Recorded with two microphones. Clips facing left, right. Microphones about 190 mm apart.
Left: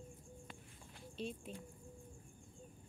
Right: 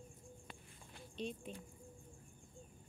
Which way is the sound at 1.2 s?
5° left (ahead or behind).